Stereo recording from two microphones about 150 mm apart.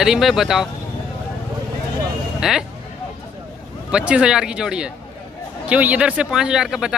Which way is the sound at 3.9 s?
5° right (ahead or behind).